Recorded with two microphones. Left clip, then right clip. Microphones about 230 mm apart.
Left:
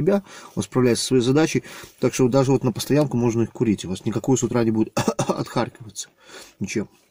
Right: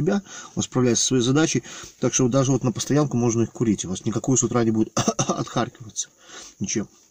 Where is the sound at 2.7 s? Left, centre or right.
Centre.